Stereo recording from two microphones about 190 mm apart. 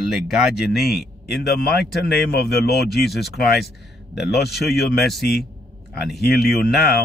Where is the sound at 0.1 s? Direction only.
Centre (ahead or behind).